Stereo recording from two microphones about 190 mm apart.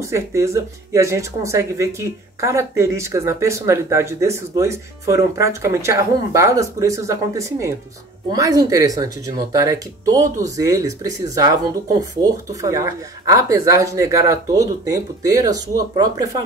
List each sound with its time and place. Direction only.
0.0 s speech: 15° right (ahead or behind)